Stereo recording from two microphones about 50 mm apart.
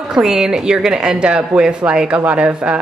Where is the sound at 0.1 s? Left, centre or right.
Centre.